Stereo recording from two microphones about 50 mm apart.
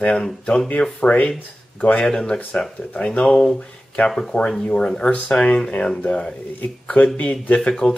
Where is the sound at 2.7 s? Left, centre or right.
Left.